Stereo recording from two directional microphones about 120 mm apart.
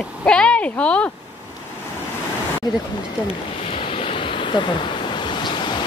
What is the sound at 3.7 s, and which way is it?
Waves, 45° left (ahead or behind).